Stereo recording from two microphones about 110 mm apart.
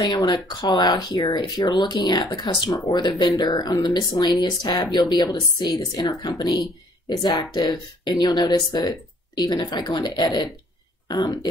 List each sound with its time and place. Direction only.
0.0 s speech: 35° left (ahead or behind)